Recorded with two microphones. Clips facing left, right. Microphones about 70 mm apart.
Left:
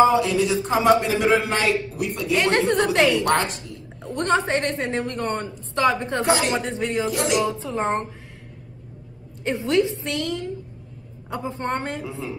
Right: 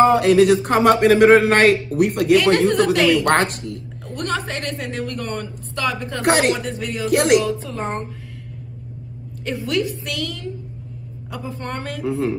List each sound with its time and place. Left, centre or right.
0.0 s speech: right
4.0 s a woman's voice: left
6.2 s speech: right
6.5 s a woman's voice: left
7.1 s speech: right
7.4 s a woman's voice: left
9.4 s a woman's voice: left
12.0 s a woman's voice: right